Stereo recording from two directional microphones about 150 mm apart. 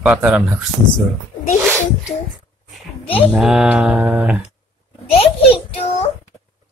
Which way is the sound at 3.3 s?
5° right (ahead or behind).